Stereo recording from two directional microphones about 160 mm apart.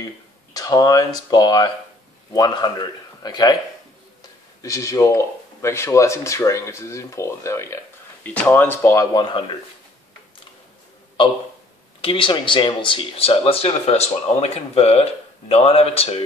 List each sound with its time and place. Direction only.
0.0 s speech: 25° left (ahead or behind)
4.6 s speech: 20° left (ahead or behind)
9.1 s speech: 25° left (ahead or behind)
12.0 s speech: 35° left (ahead or behind)